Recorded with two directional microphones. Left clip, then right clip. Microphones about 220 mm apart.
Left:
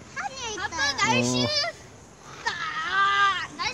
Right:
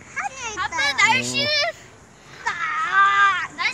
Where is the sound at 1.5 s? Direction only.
20° right (ahead or behind).